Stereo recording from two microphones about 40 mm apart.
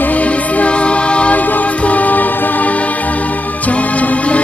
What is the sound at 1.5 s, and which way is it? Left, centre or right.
Music, left.